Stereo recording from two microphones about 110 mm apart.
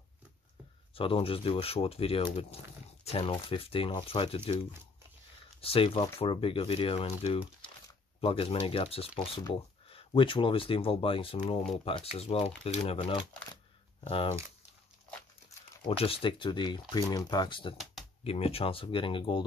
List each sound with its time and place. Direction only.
0.9 s speech: 55° left (ahead or behind)
5.6 s speech: 60° left (ahead or behind)
16.0 s speech: 55° left (ahead or behind)
18.2 s speech: 65° left (ahead or behind); by 19.4 s 50° left (ahead or behind)